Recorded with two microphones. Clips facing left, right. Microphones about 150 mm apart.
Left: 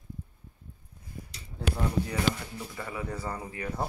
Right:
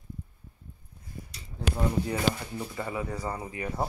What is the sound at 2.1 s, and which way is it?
Speech, 30° right (ahead or behind).